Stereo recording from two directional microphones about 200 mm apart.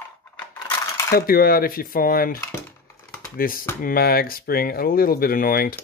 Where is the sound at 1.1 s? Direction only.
50° left (ahead or behind).